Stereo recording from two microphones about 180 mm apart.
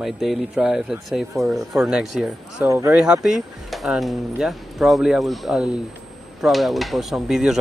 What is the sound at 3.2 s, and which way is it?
Speech, centre (ahead or behind).